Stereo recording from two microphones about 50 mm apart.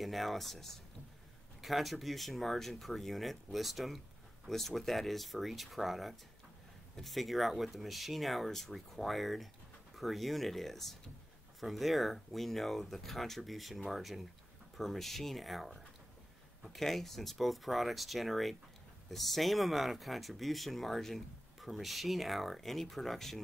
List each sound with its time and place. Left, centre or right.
0.0 s speech: centre